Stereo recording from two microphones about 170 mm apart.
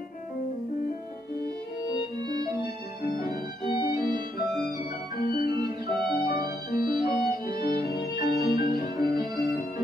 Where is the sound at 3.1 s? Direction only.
60° left (ahead or behind).